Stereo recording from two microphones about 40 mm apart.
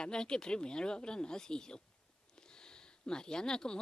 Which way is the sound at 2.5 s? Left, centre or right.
Centre.